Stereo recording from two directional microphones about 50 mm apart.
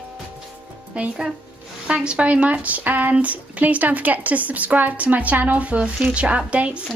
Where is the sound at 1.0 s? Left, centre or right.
Right.